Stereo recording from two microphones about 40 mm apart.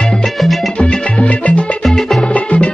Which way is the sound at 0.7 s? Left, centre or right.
Left.